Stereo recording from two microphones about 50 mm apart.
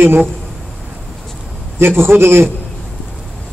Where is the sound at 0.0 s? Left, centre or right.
Right.